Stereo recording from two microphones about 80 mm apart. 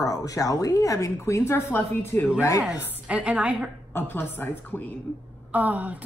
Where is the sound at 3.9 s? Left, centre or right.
Left.